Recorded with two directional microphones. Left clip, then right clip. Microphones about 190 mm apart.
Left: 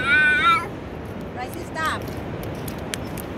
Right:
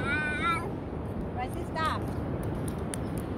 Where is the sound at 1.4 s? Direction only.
45° left (ahead or behind).